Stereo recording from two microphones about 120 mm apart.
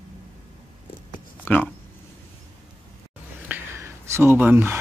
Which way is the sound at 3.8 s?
20° right (ahead or behind).